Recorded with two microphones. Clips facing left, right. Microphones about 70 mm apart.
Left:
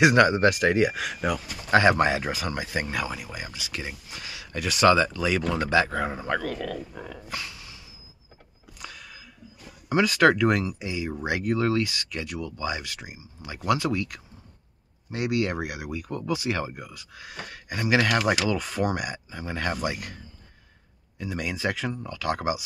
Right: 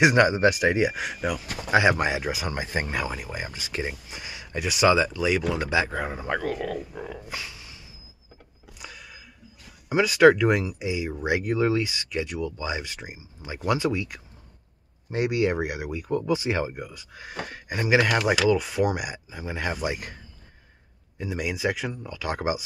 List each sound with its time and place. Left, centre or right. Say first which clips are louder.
0.0 s speech: even; centre
2.5 s speech: right 1 dB; right
3.8 s speech: right 4 dB; right
6.8 s speech: right 2 dB; centre
7.2 s a sound: even; centre
9.8 s speech: right 3 dB; centre
18.5 s speech: right 4 dB; centre
21.2 s speech: right 2 dB; centre